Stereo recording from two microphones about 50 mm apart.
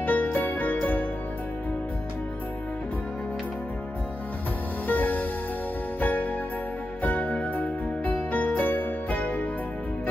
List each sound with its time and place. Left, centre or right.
0.0 s music: left
4.8 s music: left